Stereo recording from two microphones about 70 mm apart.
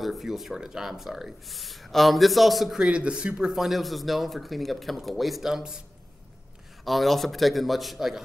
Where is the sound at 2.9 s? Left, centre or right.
Centre.